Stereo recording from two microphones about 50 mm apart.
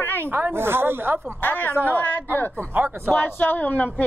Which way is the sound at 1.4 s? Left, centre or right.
Left.